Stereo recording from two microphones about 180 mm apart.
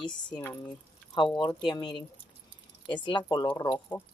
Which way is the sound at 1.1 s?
25° left (ahead or behind).